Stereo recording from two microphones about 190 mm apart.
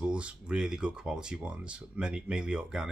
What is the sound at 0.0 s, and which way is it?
Speech, 5° right (ahead or behind).